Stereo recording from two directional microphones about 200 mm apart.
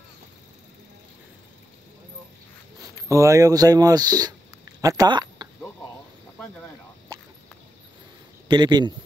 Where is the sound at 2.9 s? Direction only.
15° right (ahead or behind).